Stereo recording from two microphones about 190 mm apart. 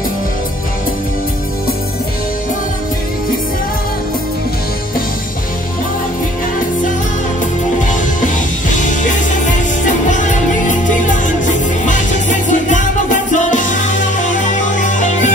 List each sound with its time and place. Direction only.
8.2 s music: 40° left (ahead or behind)